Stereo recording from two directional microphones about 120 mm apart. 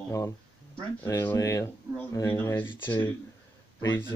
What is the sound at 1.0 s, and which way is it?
Speech, 20° left (ahead or behind).